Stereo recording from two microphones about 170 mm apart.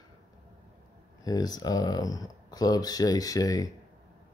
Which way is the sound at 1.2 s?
20° left (ahead or behind).